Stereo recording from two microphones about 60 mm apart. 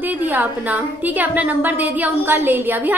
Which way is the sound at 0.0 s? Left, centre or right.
Right.